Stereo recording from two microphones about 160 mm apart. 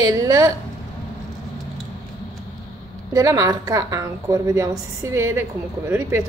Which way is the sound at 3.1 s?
20° right (ahead or behind).